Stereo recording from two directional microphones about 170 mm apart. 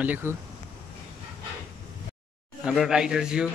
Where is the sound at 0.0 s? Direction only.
10° right (ahead or behind).